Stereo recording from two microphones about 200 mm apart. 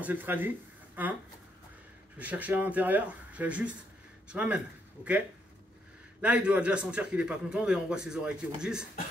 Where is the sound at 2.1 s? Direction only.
5° right (ahead or behind).